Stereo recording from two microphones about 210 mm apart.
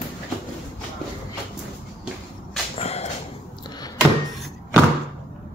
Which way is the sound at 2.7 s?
30° left (ahead or behind).